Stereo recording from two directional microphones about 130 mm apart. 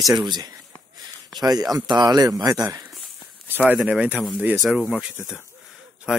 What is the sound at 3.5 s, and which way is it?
Speech, 10° right (ahead or behind).